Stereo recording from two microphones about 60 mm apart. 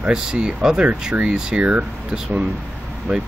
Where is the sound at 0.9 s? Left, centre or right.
Right.